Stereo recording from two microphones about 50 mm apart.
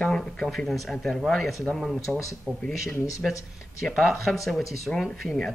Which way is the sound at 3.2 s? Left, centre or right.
Centre.